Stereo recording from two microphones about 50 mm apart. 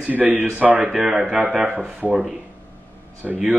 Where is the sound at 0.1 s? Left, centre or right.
Right.